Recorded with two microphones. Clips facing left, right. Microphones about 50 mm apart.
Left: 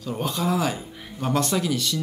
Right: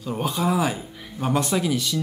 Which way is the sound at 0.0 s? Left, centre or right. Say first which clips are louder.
Right 2 dB; centre.